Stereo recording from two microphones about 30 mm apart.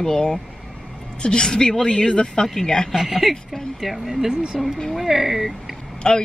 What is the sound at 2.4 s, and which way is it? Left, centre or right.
Speech, centre.